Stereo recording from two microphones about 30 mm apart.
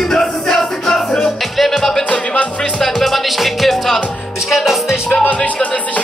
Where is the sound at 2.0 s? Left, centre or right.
Left.